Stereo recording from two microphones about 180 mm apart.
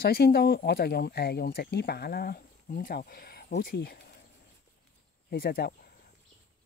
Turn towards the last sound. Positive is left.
turn(degrees=55)  # may be behind; listen again after turning